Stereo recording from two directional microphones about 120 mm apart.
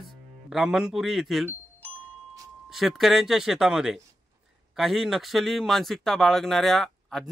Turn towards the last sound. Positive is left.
turn(degrees=0)  # may be behind; listen again after turning